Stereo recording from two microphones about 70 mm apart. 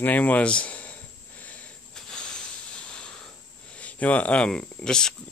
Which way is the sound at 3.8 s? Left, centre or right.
Centre.